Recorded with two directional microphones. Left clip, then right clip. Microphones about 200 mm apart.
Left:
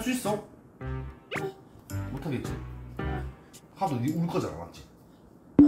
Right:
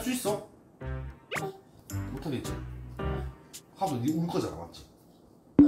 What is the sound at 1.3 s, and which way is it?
Music, centre (ahead or behind).